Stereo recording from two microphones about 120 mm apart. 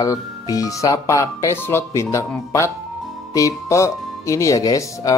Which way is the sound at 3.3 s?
30° left (ahead or behind).